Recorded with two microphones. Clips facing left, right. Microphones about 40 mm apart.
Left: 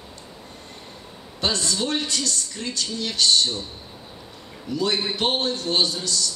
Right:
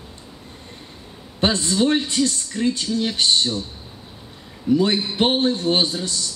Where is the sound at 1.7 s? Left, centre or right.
Right.